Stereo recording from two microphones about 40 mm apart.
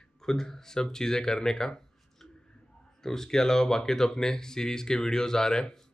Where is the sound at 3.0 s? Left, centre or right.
Centre.